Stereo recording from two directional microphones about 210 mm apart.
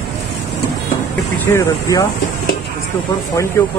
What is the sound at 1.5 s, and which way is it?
Speech, 15° left (ahead or behind).